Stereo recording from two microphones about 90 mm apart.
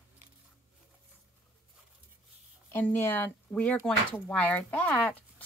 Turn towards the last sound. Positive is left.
turn(degrees=15)  # may be behind; listen again after turning